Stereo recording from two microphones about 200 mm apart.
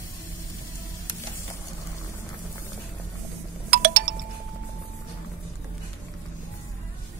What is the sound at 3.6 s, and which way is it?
Music, 45° right (ahead or behind).